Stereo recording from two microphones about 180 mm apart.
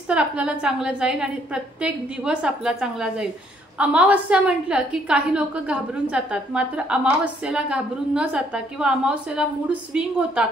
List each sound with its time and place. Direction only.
0.1 s a woman's voice: 5° right (ahead or behind)